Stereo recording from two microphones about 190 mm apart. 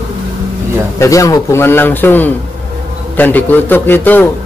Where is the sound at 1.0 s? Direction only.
15° left (ahead or behind).